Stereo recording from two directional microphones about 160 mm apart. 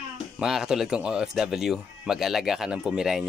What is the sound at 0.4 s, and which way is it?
Speech, 5° right (ahead or behind).